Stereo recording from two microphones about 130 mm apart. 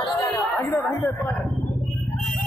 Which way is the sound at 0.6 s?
20° left (ahead or behind).